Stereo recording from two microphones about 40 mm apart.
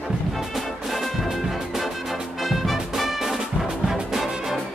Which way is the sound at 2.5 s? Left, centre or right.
Centre.